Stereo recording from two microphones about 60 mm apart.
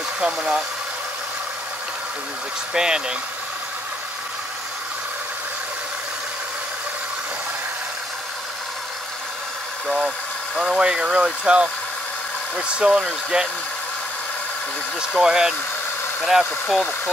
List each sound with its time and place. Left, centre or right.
0.2 s speech: centre
2.7 s speech: centre
9.8 s speech: centre
15.0 s speech: centre